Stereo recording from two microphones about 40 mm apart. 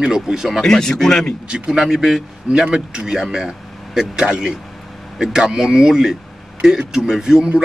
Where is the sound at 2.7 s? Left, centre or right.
Centre.